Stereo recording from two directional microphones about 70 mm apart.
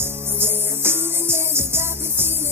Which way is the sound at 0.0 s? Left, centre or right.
Right.